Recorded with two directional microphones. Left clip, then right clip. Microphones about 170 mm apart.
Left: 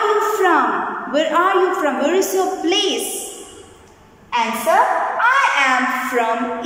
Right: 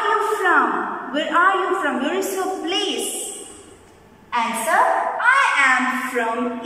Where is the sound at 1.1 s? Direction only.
20° left (ahead or behind).